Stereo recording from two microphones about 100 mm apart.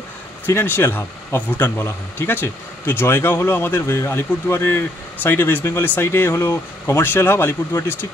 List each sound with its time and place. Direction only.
0.5 s a man's voice: 25° left (ahead or behind)